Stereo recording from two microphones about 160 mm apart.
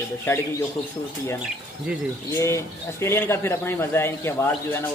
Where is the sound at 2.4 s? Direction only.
15° left (ahead or behind).